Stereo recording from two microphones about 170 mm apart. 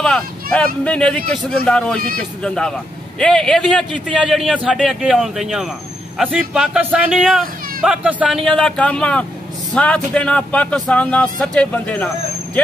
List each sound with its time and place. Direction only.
0.0 s speech: 5° left (ahead or behind)